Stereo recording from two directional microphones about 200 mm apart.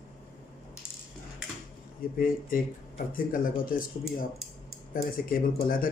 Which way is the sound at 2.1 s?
45° left (ahead or behind).